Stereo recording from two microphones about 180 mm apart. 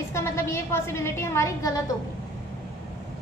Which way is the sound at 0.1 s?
15° left (ahead or behind).